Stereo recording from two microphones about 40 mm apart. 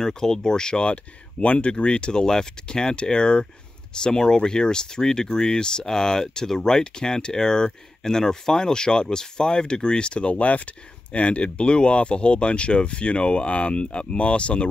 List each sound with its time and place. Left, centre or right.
0.0 s speech: centre
10.3 s speech: left